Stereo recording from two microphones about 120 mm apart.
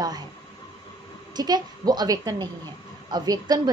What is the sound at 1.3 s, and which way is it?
A woman's voice, 35° right (ahead or behind).